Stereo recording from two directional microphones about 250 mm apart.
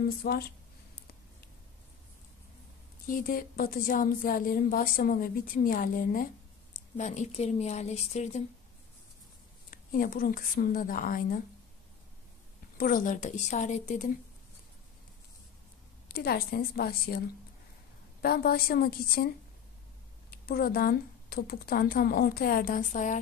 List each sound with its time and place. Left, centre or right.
0.0 s a woman's voice: left
3.1 s a woman's voice: left
9.7 s a woman's voice: left
12.7 s a woman's voice: left
16.1 s a woman's voice: left
18.2 s a woman's voice: left